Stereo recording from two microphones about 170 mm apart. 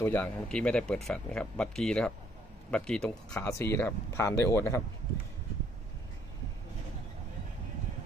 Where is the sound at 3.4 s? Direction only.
15° left (ahead or behind).